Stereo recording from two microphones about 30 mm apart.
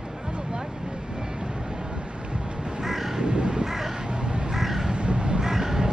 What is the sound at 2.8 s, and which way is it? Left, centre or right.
Crow, centre.